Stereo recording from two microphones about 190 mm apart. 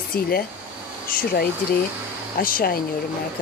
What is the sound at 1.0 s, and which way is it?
A woman's voice, 50° left (ahead or behind).